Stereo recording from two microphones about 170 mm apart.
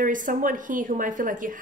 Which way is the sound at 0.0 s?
50° right (ahead or behind).